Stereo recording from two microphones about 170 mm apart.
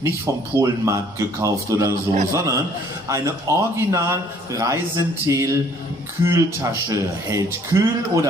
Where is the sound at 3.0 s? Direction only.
15° right (ahead or behind).